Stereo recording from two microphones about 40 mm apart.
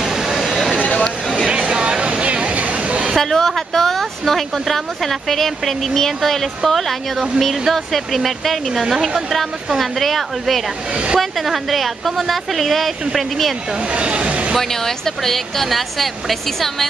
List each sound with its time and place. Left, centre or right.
0.0 s a sound: centre
0.9 s a sound: centre
1.5 s chatter: right
3.2 s speech: centre
8.8 s speech: centre
9.8 s speech: centre
13.9 s vehicle: right
14.6 s a woman's voice: centre